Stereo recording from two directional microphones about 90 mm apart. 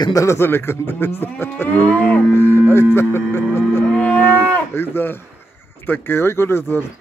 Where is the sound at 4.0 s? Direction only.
20° left (ahead or behind).